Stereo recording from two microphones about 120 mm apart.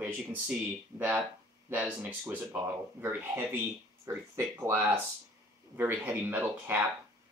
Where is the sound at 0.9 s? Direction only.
15° right (ahead or behind).